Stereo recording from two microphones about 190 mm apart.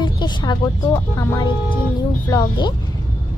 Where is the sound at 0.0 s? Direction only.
25° left (ahead or behind).